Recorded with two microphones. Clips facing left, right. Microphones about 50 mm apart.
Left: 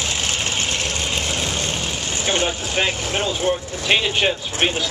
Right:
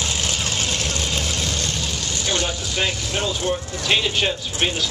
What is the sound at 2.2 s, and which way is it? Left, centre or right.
Speech, left.